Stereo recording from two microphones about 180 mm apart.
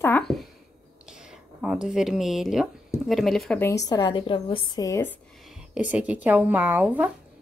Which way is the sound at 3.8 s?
20° left (ahead or behind).